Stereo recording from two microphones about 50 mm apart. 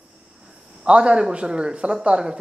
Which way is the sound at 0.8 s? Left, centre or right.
Centre.